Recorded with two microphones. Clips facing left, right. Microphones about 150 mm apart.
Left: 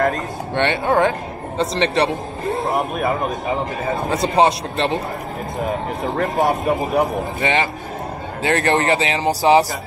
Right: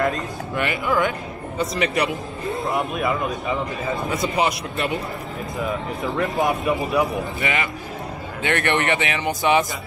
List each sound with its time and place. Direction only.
0.6 s speech: 30° left (ahead or behind)
2.8 s speech: 45° left (ahead or behind)
4.0 s speech: 30° left (ahead or behind)
5.6 s speech: 45° left (ahead or behind)
7.4 s speech: 30° left (ahead or behind)